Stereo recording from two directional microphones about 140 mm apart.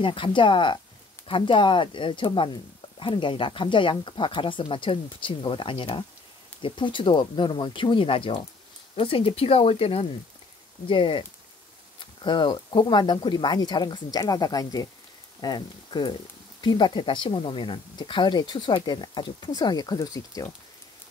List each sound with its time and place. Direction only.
0.0 s speech: 35° left (ahead or behind)